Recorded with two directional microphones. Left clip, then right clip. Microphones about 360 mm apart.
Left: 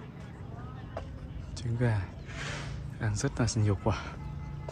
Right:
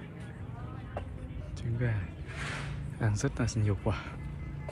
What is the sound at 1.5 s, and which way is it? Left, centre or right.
Speech, centre.